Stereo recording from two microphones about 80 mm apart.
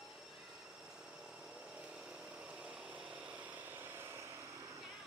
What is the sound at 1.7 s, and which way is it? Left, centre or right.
Power tool, centre.